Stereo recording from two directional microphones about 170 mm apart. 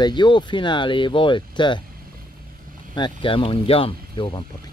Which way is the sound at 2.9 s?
30° left (ahead or behind).